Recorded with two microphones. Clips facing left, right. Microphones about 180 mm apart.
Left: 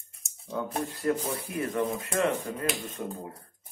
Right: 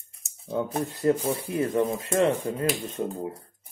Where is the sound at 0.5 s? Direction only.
25° right (ahead or behind).